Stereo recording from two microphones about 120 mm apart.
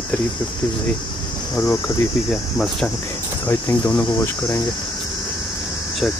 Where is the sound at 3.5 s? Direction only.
20° left (ahead or behind).